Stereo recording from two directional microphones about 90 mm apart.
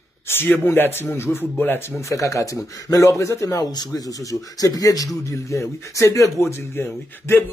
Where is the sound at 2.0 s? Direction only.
35° left (ahead or behind).